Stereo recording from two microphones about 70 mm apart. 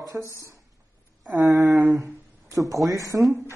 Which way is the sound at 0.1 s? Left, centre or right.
Right.